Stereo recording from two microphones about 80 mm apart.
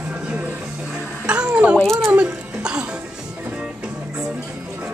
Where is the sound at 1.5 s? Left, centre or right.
Centre.